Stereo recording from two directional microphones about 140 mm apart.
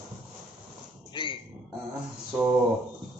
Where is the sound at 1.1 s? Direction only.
35° left (ahead or behind).